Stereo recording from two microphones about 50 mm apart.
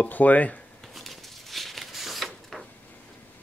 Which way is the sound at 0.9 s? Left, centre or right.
Centre.